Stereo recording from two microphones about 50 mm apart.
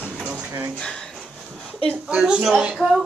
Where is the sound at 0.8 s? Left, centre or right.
Centre.